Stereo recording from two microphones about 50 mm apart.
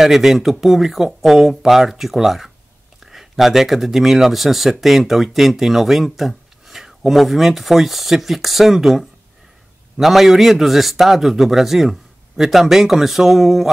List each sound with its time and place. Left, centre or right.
0.0 s speech: centre